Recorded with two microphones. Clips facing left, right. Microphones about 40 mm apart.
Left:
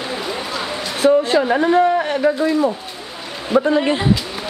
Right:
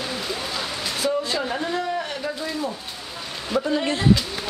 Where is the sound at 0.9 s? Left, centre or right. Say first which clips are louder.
Left 11 dB; left.